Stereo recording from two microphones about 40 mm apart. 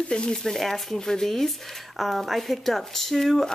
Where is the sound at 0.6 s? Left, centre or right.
Centre.